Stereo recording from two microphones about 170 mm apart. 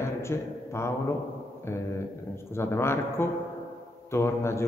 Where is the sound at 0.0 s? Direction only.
15° left (ahead or behind).